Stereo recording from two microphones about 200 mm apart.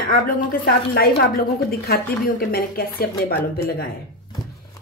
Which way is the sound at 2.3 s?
50° left (ahead or behind).